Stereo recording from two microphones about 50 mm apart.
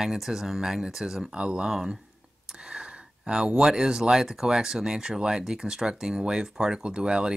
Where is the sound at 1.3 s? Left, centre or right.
Centre.